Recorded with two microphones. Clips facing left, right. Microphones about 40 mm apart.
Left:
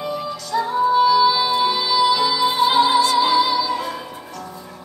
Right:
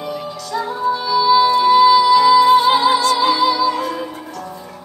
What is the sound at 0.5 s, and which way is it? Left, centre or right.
Music, centre.